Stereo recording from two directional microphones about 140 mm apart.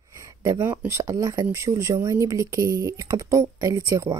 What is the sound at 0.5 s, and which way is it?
Speech, 15° right (ahead or behind).